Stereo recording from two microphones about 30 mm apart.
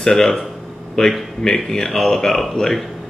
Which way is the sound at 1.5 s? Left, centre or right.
Centre.